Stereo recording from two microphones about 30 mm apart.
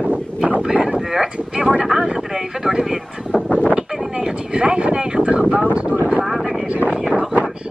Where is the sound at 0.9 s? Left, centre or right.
Centre.